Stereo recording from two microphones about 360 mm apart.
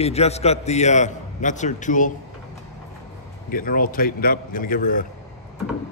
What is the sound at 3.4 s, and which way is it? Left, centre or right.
A man's voice, left.